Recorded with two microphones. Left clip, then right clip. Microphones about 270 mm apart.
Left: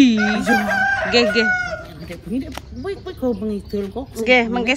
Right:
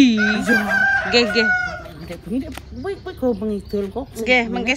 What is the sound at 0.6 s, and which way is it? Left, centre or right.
Chicken, left.